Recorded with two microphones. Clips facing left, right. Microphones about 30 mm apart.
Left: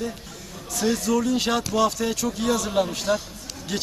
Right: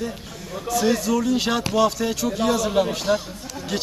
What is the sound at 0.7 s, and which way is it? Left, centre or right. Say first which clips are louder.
Speech: right 3 dB; centre.